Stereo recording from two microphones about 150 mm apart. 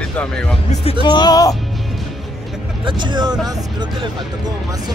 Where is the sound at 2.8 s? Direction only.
30° right (ahead or behind).